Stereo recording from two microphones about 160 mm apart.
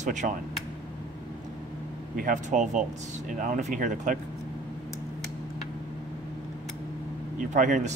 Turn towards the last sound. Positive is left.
turn(degrees=-50)  # may be behind; listen again after turning